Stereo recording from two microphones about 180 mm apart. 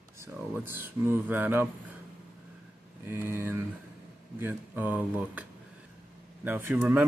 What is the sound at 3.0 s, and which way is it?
A man's voice, 15° right (ahead or behind).